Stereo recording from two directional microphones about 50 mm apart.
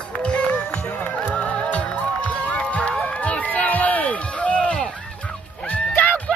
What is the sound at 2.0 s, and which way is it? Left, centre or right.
Run, left.